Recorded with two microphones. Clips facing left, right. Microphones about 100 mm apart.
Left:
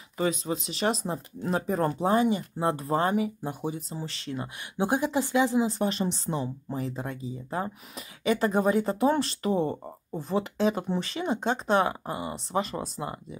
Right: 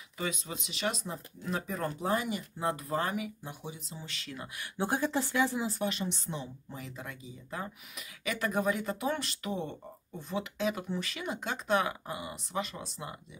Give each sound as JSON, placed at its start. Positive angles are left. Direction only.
{"t": 0.2, "sound": "speech", "side_deg": 40}
{"t": 3.4, "sound": "speech", "side_deg": 45}
{"t": 4.7, "sound": "speech", "side_deg": 15}
{"t": 5.8, "sound": "speech", "side_deg": 35}